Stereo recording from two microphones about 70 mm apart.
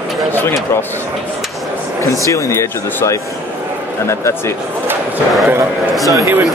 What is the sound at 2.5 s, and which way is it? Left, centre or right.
Speech, left.